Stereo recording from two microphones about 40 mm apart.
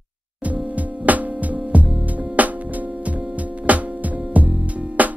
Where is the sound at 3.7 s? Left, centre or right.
Right.